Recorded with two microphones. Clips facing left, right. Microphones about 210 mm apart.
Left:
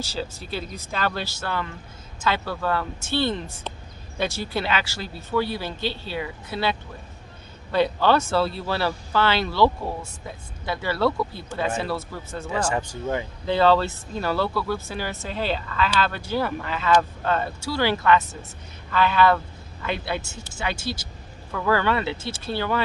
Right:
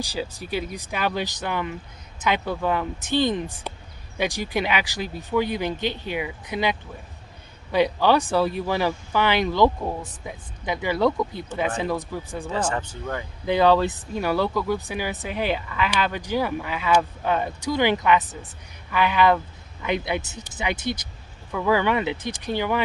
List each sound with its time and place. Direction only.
0.0 s speech: 15° right (ahead or behind)
12.4 s speech: 10° left (ahead or behind)
13.5 s speech: 15° right (ahead or behind)